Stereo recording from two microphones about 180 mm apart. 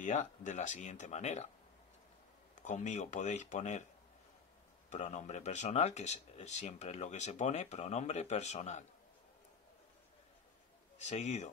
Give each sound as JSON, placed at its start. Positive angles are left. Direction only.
{"t": 0.0, "sound": "speech", "side_deg": 40}
{"t": 2.5, "sound": "speech", "side_deg": 45}
{"t": 4.8, "sound": "speech", "side_deg": 40}
{"t": 11.0, "sound": "speech", "side_deg": 40}